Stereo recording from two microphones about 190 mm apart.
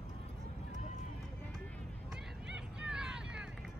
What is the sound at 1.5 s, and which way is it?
Run, 5° left (ahead or behind).